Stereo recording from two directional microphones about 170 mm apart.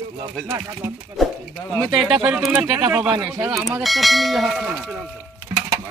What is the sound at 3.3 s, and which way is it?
Speech, 20° right (ahead or behind).